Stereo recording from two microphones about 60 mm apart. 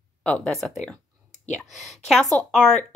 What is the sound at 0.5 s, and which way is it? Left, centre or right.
Speech, centre.